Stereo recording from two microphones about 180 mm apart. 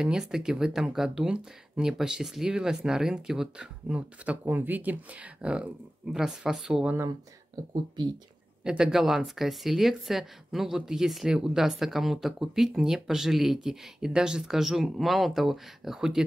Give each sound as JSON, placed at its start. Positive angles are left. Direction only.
{"t": 0.0, "sound": "speech", "side_deg": -5}
{"t": 7.5, "sound": "speech", "side_deg": -20}
{"t": 8.6, "sound": "speech", "side_deg": -5}